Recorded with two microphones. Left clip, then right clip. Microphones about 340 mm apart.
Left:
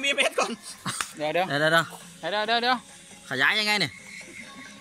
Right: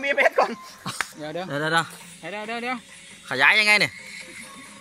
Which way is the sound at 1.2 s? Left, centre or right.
Left.